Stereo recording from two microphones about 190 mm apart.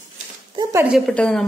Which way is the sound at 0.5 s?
15° right (ahead or behind).